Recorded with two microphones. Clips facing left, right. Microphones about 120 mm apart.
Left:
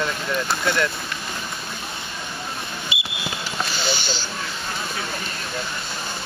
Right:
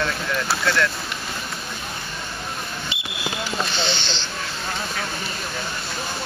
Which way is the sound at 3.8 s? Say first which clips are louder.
Even; 5° left (ahead or behind).